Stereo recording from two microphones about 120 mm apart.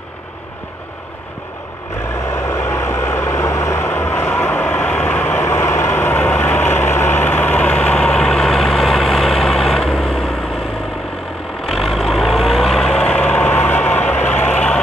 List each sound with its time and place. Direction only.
2.3 s vehicle: 25° left (ahead or behind); by 10.3 s 5° left (ahead or behind)
11.6 s vehicle: centre (ahead or behind)